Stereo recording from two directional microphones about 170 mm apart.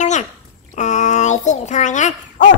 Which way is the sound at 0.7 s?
45° left (ahead or behind).